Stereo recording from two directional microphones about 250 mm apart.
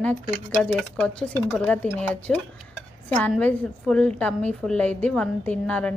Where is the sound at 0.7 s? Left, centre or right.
Centre.